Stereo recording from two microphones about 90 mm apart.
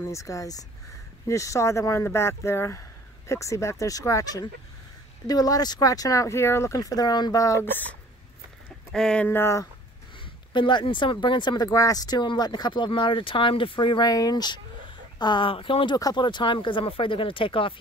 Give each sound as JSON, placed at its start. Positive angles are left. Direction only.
{"t": 0.1, "sound": "speech", "side_deg": 35}
{"t": 7.6, "sound": "speech", "side_deg": 20}
{"t": 8.9, "sound": "speech", "side_deg": 10}
{"t": 9.3, "sound": "speech", "side_deg": 30}
{"t": 10.5, "sound": "speech", "side_deg": 60}
{"t": 14.1, "sound": "speech", "side_deg": 50}
{"t": 16.0, "sound": "speech", "side_deg": 50}